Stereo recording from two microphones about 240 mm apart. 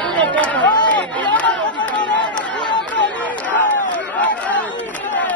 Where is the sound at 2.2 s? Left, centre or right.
Centre.